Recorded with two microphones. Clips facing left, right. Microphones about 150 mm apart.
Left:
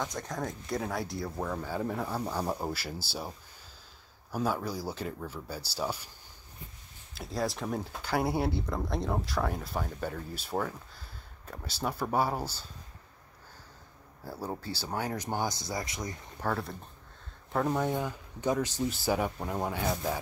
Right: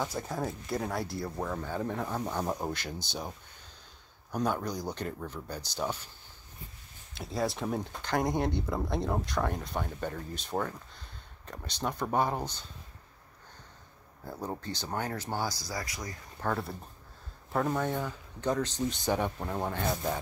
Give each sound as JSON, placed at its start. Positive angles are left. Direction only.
{"t": 0.0, "sound": "speech", "side_deg": -5}
{"t": 7.2, "sound": "speech", "side_deg": 0}
{"t": 14.2, "sound": "speech", "side_deg": 5}
{"t": 16.3, "sound": "speech", "side_deg": 0}
{"t": 17.6, "sound": "speech", "side_deg": 10}